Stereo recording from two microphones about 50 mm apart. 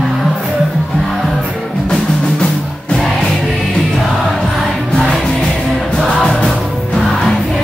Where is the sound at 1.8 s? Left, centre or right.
Centre.